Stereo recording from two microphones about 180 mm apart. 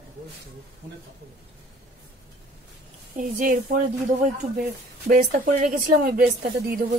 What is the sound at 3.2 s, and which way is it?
Speech, 50° right (ahead or behind).